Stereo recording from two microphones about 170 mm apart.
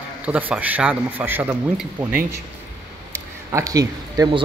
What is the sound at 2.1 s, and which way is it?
Speech, 55° right (ahead or behind).